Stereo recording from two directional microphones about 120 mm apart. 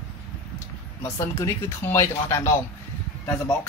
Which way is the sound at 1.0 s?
25° left (ahead or behind).